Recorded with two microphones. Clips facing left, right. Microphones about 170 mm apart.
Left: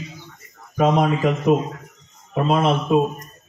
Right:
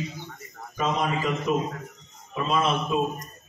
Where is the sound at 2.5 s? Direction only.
55° left (ahead or behind).